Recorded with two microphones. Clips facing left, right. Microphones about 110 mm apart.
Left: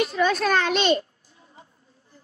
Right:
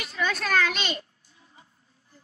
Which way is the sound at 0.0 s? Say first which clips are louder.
Left 8 dB; 35° left (ahead or behind).